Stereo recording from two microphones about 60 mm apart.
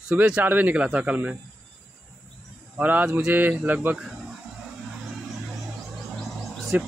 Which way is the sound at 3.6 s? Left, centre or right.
Right.